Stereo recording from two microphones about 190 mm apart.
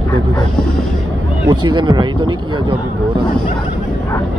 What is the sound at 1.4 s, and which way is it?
Speech, 20° right (ahead or behind).